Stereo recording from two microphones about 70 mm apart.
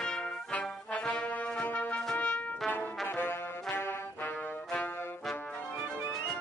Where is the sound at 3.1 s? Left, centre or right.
Left.